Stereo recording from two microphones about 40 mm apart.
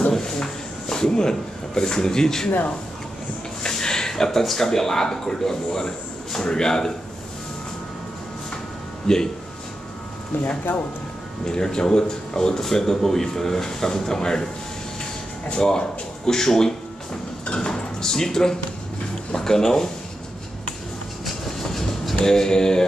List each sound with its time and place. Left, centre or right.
0.1 s a sound: centre
1.8 s speech: centre
3.6 s speech: centre
9.0 s speech: centre
11.4 s speech: centre
15.5 s speech: left
17.6 s a sound: centre
19.3 s speech: centre
21.5 s vehicle: centre